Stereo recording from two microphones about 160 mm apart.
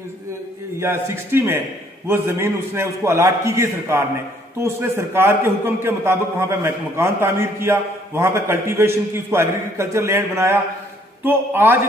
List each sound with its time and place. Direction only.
0.7 s a man's voice: 15° right (ahead or behind)